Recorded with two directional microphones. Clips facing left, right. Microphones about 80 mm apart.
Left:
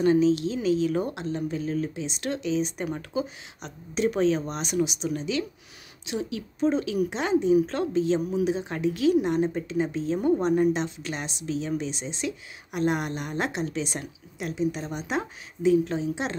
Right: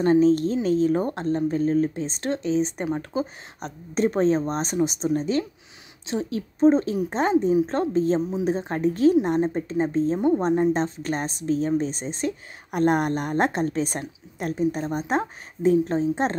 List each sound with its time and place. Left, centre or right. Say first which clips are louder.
0.0 s speech: right 3 dB; right
10.1 s speech: left 2 dB; right
10.7 s speech: right 4 dB; right